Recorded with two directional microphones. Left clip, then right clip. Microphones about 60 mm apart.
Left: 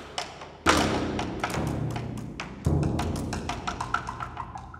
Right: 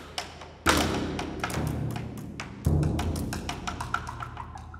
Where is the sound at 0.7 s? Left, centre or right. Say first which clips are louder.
Left 2 dB; centre.